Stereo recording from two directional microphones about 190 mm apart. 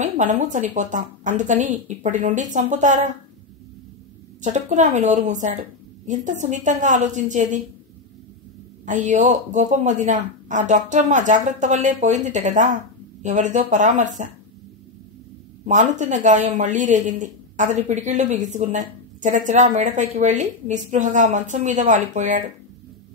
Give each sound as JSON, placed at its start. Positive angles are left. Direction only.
{"t": 0.0, "sound": "speech", "side_deg": -40}
{"t": 4.4, "sound": "speech", "side_deg": -40}
{"t": 8.8, "sound": "speech", "side_deg": -40}
{"t": 15.6, "sound": "speech", "side_deg": -40}